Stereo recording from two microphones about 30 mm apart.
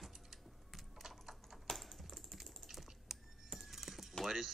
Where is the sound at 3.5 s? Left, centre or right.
Centre.